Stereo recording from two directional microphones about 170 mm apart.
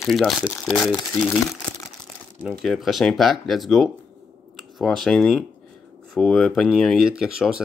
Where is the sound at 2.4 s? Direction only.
Centre (ahead or behind).